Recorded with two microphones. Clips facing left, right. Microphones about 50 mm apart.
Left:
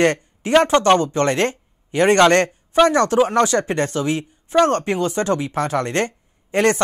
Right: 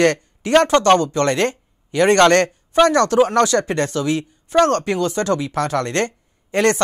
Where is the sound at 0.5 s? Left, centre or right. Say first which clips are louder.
Right 1 dB; centre.